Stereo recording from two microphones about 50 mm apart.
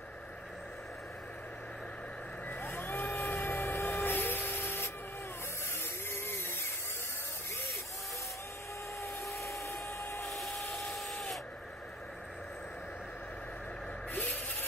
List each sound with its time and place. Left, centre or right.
2.5 s vehicle: left
5.8 s a sound: left
9.5 s helicopter: left
10.3 s a sound: centre
10.9 s printer: centre
14.1 s vehicle: left